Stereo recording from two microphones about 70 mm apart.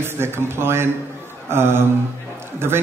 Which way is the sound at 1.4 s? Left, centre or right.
Right.